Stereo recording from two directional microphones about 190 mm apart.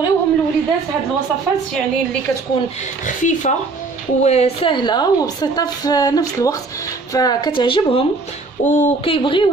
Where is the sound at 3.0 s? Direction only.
40° left (ahead or behind).